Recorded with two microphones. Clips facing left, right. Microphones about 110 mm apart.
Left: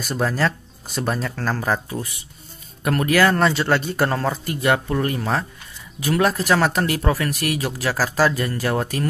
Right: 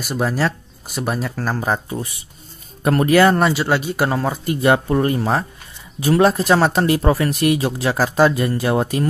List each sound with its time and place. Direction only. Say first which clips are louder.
0.0 s speech: right 1 dB; 10° right (ahead or behind)
3.3 s speech: right 1 dB; 10° right (ahead or behind)
4.6 s speech: right 5 dB; 25° right (ahead or behind)